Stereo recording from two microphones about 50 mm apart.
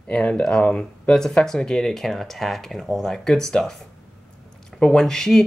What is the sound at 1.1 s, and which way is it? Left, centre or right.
Speech, centre.